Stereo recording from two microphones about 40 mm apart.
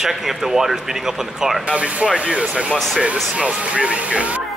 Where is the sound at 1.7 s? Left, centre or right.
Right.